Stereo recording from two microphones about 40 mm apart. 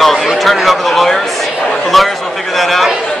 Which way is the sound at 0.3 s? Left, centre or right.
Centre.